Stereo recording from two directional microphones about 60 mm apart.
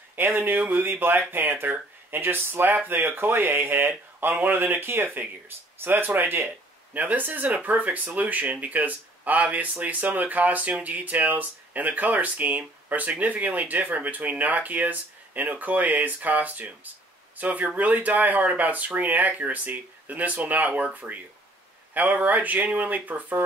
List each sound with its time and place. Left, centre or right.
0.1 s speech: right